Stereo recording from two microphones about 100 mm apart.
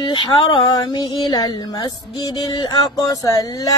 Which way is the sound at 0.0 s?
55° left (ahead or behind).